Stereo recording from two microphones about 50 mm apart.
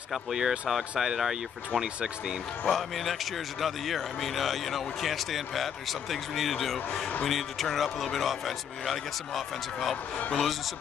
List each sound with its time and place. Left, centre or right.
0.1 s speech: centre
2.7 s speech: centre
10.1 s speech: left